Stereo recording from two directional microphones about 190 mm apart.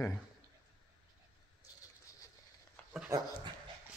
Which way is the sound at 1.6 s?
15° left (ahead or behind).